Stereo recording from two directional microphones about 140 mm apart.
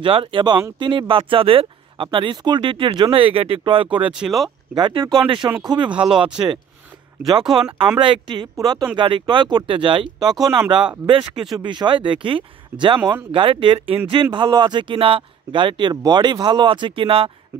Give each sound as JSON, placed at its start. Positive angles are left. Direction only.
{"t": 0.0, "sound": "speech", "side_deg": -40}
{"t": 4.1, "sound": "speech", "side_deg": 0}
{"t": 4.7, "sound": "speech", "side_deg": -35}
{"t": 5.9, "sound": "speech", "side_deg": -5}
{"t": 6.3, "sound": "speech", "side_deg": -30}
{"t": 8.0, "sound": "speech", "side_deg": -35}